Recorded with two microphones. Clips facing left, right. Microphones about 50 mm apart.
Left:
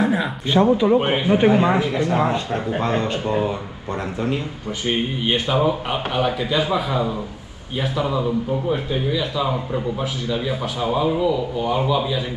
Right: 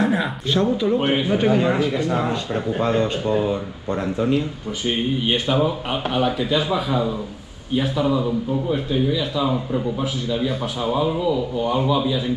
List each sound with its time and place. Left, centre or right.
0.0 s a sound: centre
0.5 s speech: left
5.5 s speech: centre
9.1 s speech: centre